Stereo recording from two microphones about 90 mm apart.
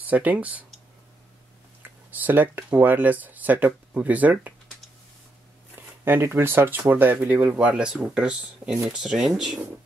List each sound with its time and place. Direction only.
0.0 s speech: 15° right (ahead or behind)
2.0 s speech: 20° right (ahead or behind)
6.0 s speech: 25° right (ahead or behind); by 9.6 s 5° right (ahead or behind)